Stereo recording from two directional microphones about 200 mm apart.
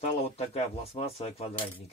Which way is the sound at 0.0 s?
30° left (ahead or behind).